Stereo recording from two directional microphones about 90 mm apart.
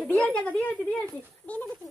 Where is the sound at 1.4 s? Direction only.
15° left (ahead or behind).